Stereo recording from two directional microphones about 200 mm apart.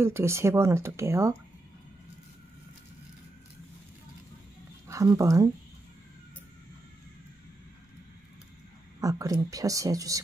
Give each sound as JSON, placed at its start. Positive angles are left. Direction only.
{"t": 0.0, "sound": "speech", "side_deg": -10}
{"t": 4.8, "sound": "speech", "side_deg": -15}
{"t": 9.0, "sound": "speech", "side_deg": -15}